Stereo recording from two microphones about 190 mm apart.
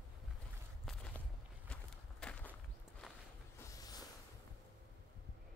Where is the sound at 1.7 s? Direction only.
5° left (ahead or behind).